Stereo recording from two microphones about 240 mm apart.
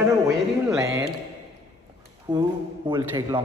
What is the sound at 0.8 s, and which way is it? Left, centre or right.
Speech, centre.